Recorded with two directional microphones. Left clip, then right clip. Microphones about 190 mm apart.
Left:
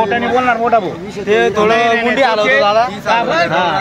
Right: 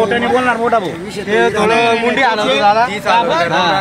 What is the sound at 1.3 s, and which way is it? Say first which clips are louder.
Speech: left 1 dB; 40° left (ahead or behind).